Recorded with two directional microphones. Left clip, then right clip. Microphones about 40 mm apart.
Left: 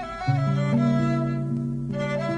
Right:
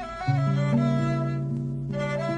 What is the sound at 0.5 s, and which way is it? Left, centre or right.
Music, centre.